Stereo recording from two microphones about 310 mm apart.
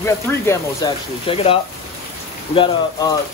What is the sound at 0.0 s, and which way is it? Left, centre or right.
Speech, centre.